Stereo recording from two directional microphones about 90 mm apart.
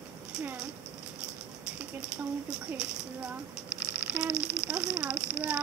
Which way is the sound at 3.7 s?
30° left (ahead or behind).